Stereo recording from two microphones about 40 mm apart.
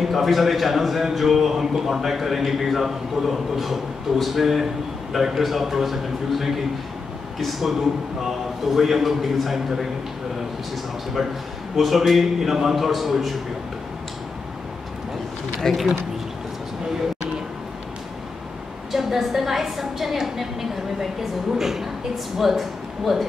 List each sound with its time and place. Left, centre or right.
0.0 s a man's voice: centre
3.5 s a man's voice: centre
8.7 s a man's voice: centre
11.2 s a man's voice: centre
15.7 s a man's voice: centre
18.9 s a man's voice: centre